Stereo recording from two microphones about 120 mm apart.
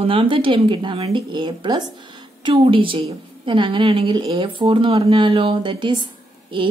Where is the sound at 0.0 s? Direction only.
50° right (ahead or behind).